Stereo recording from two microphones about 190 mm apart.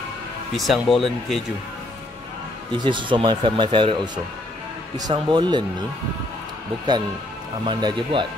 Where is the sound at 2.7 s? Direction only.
25° right (ahead or behind).